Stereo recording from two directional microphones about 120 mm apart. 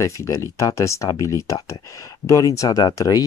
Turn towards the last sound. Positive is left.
turn(degrees=30)  # may be behind; listen again after turning